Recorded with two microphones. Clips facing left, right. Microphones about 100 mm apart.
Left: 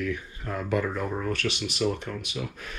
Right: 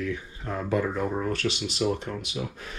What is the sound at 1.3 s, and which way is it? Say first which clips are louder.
Speech: right 1 dB; 20° right (ahead or behind).